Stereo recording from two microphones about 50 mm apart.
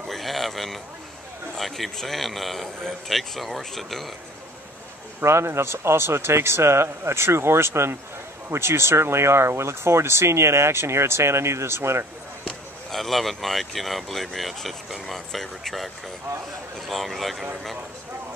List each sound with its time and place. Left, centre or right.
0.1 s a sound: centre
1.6 s speech: centre
5.2 s speech: right
12.4 s speech: centre